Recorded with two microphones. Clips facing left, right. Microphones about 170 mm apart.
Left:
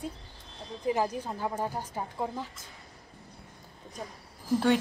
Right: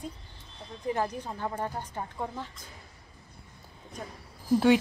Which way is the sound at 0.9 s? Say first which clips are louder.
Left 1 dB; 10° left (ahead or behind).